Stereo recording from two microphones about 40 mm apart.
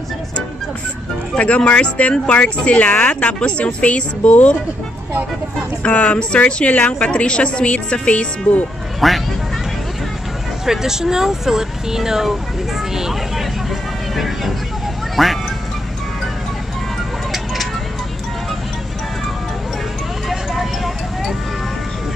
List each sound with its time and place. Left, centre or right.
1.4 s speech: left
5.8 s speech: left
9.0 s speech: centre
10.6 s speech: centre
12.9 s vehicle: centre
15.2 s speech: centre
20.2 s vehicle: centre